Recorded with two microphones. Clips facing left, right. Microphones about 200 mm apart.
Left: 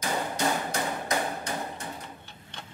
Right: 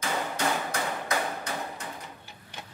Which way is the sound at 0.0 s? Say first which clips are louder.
Left 1 dB; 15° left (ahead or behind).